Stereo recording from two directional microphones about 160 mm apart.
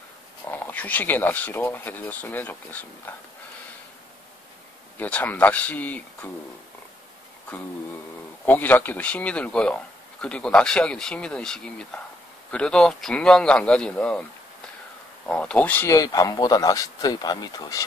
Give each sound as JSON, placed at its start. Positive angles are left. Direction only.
{"t": 0.5, "sound": "speech", "side_deg": 10}
{"t": 4.9, "sound": "speech", "side_deg": 10}
{"t": 8.5, "sound": "speech", "side_deg": 10}
{"t": 15.2, "sound": "speech", "side_deg": 5}